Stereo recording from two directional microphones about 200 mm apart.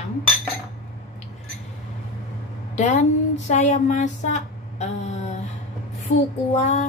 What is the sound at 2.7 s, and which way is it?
Speech, 35° left (ahead or behind).